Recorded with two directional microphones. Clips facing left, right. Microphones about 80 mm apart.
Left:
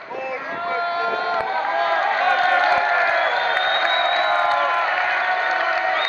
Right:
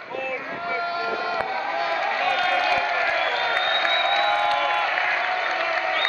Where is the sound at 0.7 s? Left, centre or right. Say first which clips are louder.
Left 4 dB; left.